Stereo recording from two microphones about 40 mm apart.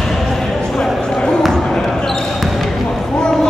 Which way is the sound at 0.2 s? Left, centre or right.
Centre.